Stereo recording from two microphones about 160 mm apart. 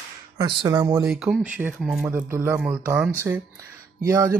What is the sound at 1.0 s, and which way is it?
Speech, centre (ahead or behind).